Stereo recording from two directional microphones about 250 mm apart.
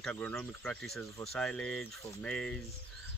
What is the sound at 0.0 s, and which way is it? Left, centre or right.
Speech, centre.